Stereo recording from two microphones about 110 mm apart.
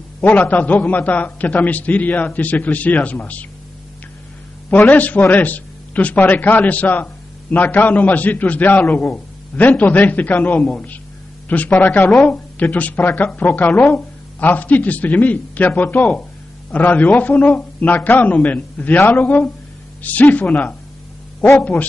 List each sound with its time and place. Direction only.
0.2 s a man's voice: 15° left (ahead or behind)
4.6 s a man's voice: 15° left (ahead or behind)